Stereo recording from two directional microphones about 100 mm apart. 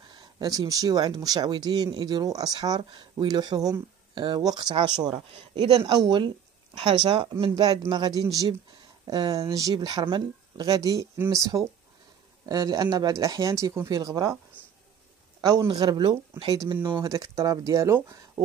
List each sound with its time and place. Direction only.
0.1 s speech: 40° right (ahead or behind)
2.8 s speech: 50° right (ahead or behind)
7.9 s speech: 40° right (ahead or behind)
10.7 s speech: 35° right (ahead or behind)
15.8 s speech: 45° right (ahead or behind)
17.0 s speech: 35° right (ahead or behind)